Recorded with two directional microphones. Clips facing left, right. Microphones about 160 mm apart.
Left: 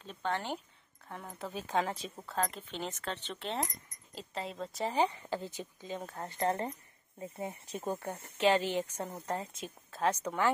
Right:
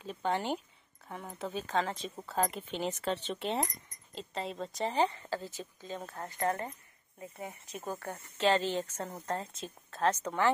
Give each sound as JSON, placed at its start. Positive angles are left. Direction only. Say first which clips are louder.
{"t": 0.0, "sound": "speech", "louder": "right 3 dB", "side_deg": -10}
{"t": 1.0, "sound": "speech", "louder": "right 2 dB", "side_deg": 0}
{"t": 1.6, "sound": "a woman's voice", "louder": "even", "side_deg": 10}
{"t": 2.1, "sound": "speech", "louder": "right 4 dB", "side_deg": -5}
{"t": 4.1, "sound": "speech", "louder": "right 2 dB", "side_deg": 5}
{"t": 5.0, "sound": "a woman's voice", "louder": "right 1 dB", "side_deg": 15}
{"t": 6.2, "sound": "speech", "louder": "left 1 dB", "side_deg": 30}
{"t": 8.4, "sound": "a woman's voice", "louder": "even", "side_deg": 15}